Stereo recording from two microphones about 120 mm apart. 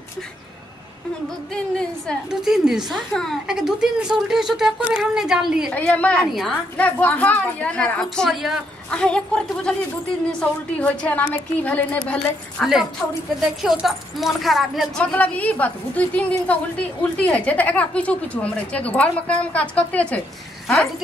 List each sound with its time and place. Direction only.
1.5 s a woman's voice: 5° left (ahead or behind)
2.4 s a woman's voice: 5° right (ahead or behind)
5.7 s a woman's voice: 10° left (ahead or behind)
10.8 s a woman's voice: 10° left (ahead or behind)
13.4 s a woman's voice: 5° right (ahead or behind)
15.0 s a woman's voice: 10° left (ahead or behind)